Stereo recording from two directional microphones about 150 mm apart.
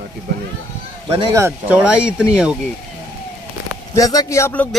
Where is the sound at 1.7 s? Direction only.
10° right (ahead or behind).